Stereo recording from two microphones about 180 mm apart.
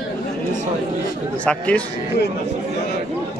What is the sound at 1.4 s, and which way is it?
Speech, 5° left (ahead or behind).